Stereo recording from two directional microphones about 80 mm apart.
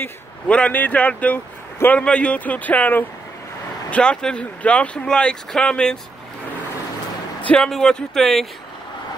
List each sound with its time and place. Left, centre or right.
0.5 s speech: centre
7.4 s speech: centre